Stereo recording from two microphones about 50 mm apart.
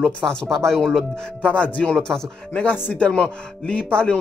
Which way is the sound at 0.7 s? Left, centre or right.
Centre.